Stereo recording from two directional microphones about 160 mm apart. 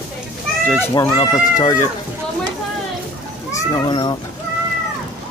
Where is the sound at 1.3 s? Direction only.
20° left (ahead or behind).